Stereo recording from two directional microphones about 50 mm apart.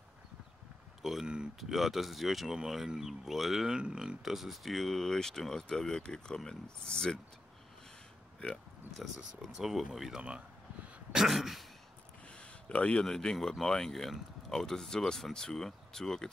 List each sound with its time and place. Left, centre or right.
1.2 s speech: centre
1.6 s speech: centre
3.7 s speech: centre
9.6 s speech: centre
12.3 s a sound: left
13.0 s speech: centre